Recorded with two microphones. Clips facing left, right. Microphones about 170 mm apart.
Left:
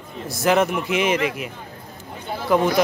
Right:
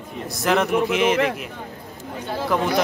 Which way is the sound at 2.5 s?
Centre (ahead or behind).